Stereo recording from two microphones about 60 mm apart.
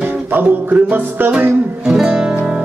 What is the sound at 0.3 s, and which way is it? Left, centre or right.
A man's voice, right.